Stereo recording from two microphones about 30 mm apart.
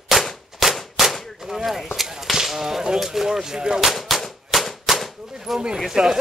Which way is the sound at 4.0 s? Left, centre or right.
Centre.